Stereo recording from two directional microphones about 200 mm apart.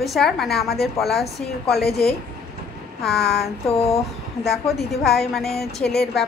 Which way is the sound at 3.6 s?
30° left (ahead or behind).